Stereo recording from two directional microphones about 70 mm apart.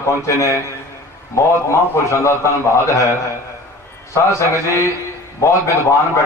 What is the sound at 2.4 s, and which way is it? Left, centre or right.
Speech, left.